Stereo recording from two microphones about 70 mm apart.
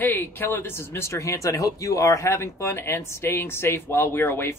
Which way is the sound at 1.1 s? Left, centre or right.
Left.